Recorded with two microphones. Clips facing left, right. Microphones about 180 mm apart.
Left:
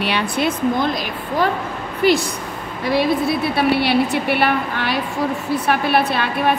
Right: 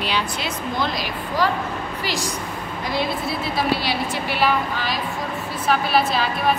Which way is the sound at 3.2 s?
65° left (ahead or behind).